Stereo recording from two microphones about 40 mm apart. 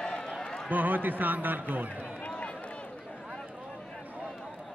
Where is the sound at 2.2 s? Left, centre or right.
Left.